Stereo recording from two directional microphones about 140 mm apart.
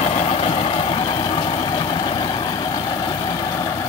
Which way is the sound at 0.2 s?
45° left (ahead or behind).